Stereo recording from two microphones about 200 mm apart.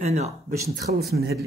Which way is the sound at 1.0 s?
50° right (ahead or behind).